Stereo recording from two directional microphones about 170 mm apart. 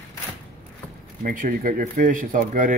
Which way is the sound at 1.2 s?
55° right (ahead or behind).